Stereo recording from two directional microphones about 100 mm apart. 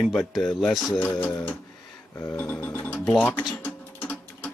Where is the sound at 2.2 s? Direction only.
20° left (ahead or behind).